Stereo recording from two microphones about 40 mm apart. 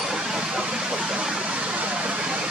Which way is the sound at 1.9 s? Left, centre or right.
Right.